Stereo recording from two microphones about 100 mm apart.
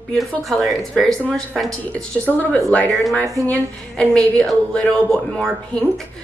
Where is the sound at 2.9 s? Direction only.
Centre (ahead or behind).